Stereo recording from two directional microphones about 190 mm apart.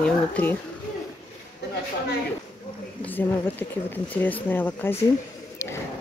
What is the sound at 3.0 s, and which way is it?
Speech, 10° left (ahead or behind).